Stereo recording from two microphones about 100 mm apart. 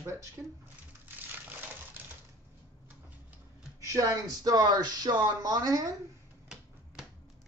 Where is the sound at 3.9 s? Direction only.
35° right (ahead or behind).